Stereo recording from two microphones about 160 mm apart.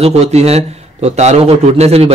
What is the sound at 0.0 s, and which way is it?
A man's voice, 40° right (ahead or behind).